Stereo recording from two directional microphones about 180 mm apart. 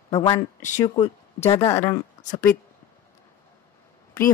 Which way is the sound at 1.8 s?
20° left (ahead or behind).